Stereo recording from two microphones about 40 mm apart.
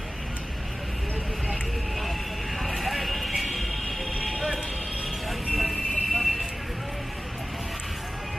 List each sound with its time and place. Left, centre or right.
1.5 s vehicle: centre
2.7 s clip-clop: centre
5.5 s vehicle: centre